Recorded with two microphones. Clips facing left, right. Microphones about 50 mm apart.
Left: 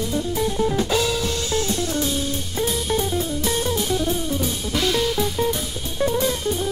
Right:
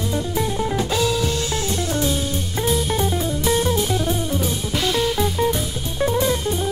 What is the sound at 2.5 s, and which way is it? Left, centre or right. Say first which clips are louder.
Music: right 2 dB; centre.